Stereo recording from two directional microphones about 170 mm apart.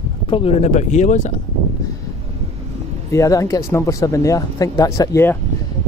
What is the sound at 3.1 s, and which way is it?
Speech, 20° left (ahead or behind).